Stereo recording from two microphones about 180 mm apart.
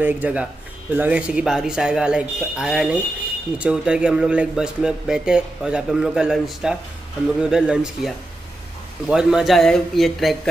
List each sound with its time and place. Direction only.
0.0 s a man's voice: 10° right (ahead or behind)
9.1 s a man's voice: 5° right (ahead or behind)